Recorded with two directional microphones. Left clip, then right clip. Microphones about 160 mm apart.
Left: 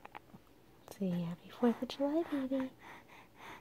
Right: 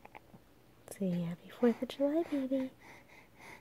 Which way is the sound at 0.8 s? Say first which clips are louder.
Right 2 dB; 25° right (ahead or behind).